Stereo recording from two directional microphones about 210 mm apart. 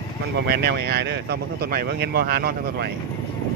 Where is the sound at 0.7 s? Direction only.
50° right (ahead or behind).